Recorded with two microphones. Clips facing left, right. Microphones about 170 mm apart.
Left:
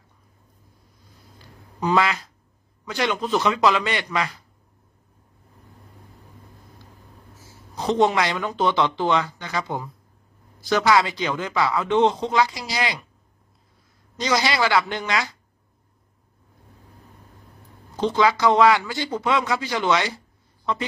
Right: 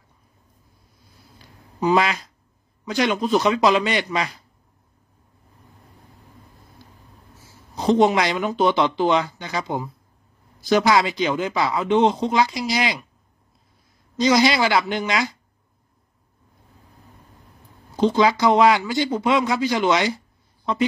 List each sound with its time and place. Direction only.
1.8 s a man's voice: 15° right (ahead or behind)
7.8 s a man's voice: 15° right (ahead or behind)
14.2 s a man's voice: 20° right (ahead or behind)
17.9 s a man's voice: 15° right (ahead or behind)